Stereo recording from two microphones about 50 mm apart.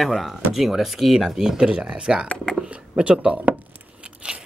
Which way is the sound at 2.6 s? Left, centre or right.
Right.